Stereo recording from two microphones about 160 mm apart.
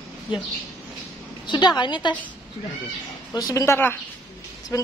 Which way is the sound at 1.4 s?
25° left (ahead or behind).